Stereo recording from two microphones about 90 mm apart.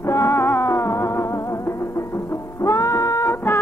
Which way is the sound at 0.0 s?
30° left (ahead or behind).